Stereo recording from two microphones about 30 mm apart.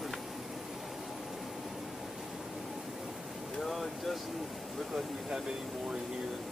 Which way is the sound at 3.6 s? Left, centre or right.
Centre.